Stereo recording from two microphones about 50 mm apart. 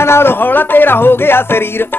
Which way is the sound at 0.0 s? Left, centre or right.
Left.